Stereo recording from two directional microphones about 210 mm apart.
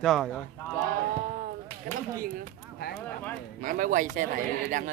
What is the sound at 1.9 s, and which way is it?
Speech, 45° right (ahead or behind).